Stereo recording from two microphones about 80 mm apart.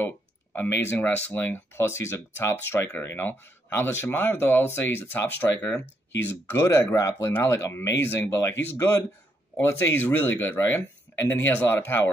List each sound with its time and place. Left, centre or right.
0.6 s speech: left
7.1 s speech: left
7.4 s speech: left